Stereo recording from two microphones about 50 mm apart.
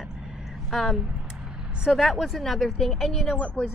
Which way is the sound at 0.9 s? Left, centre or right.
Centre.